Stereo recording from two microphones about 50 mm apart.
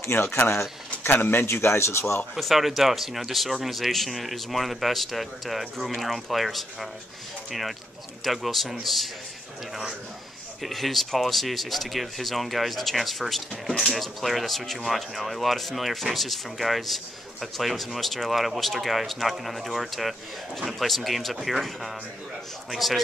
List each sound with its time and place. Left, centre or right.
0.1 s speech: left
0.5 s a sound: left
1.1 s speech: left
1.4 s speech: left
2.3 s speech: centre
8.2 s speech: centre
10.6 s speech: centre